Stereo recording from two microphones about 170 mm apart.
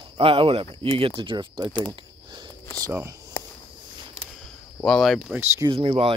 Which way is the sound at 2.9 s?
10° right (ahead or behind).